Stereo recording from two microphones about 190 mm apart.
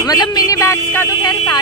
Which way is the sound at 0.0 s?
20° left (ahead or behind).